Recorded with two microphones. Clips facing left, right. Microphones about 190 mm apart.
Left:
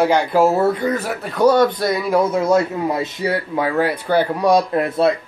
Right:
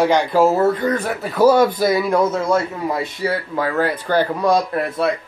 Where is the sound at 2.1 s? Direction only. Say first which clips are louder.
Left 1 dB; 10° left (ahead or behind).